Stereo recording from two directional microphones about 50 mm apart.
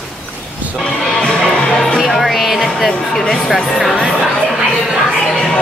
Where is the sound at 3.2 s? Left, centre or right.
Centre.